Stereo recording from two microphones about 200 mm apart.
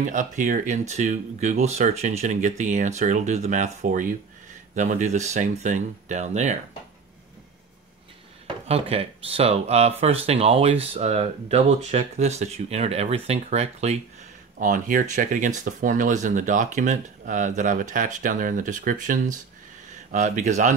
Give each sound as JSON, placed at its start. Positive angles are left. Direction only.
{"t": 0.0, "sound": "speech", "side_deg": -40}
{"t": 8.6, "sound": "speech", "side_deg": -30}